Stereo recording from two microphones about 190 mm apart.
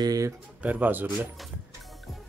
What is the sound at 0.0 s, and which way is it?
Speech, 20° right (ahead or behind).